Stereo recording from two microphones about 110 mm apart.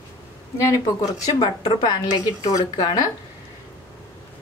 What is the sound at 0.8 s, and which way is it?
A woman's voice, 35° left (ahead or behind).